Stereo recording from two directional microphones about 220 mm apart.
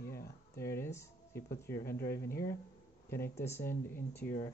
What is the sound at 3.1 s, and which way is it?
Speech, 10° left (ahead or behind).